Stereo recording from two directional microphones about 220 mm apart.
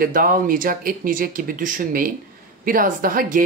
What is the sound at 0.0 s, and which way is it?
Speech, 40° right (ahead or behind).